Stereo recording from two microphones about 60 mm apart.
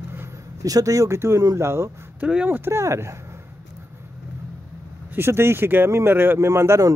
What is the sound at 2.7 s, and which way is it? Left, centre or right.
Speech, right.